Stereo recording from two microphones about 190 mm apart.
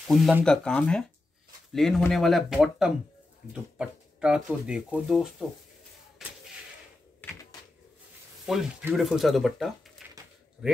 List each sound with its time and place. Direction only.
0.0 s speech: centre (ahead or behind)
6.2 s a sound: centre (ahead or behind)
8.5 s speech: centre (ahead or behind)